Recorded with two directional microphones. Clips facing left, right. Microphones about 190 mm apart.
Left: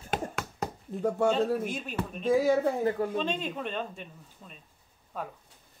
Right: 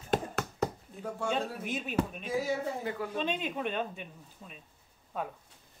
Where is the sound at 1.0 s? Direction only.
45° left (ahead or behind).